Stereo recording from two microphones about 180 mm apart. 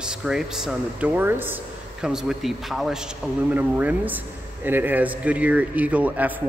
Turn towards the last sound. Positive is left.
turn(degrees=-10)  # may be behind; listen again after turning